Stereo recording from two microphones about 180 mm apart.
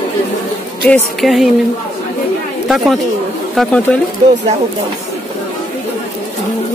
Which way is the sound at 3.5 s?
5° left (ahead or behind).